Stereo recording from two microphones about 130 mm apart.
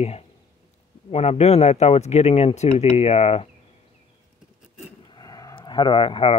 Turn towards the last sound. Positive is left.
turn(degrees=45)  # may be behind; listen again after turning